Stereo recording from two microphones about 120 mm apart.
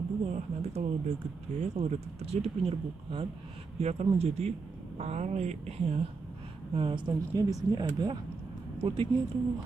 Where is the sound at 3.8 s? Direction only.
65° right (ahead or behind).